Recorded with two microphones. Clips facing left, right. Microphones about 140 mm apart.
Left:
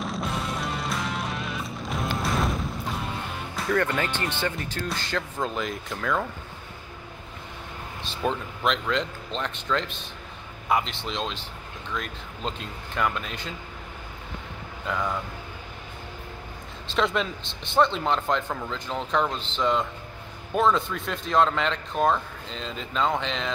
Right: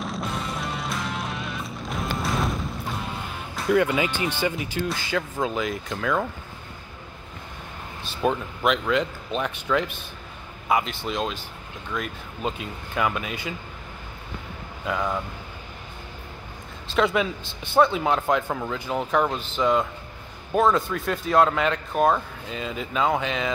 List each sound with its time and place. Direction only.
0.0 s music: centre (ahead or behind)
8.1 s speech: 5° right (ahead or behind)
14.9 s speech: 5° right (ahead or behind)
16.9 s speech: 5° right (ahead or behind)